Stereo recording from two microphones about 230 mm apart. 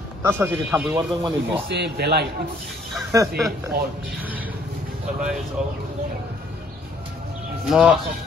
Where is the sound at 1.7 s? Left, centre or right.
Right.